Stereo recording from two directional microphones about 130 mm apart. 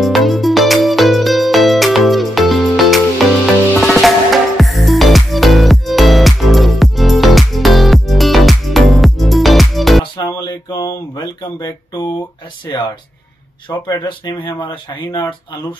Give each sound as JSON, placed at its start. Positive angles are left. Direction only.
{"t": 0.0, "sound": "music", "side_deg": 0}
{"t": 10.1, "sound": "a sound", "side_deg": 30}
{"t": 12.7, "sound": "music", "side_deg": 30}
{"t": 13.7, "sound": "speech", "side_deg": 35}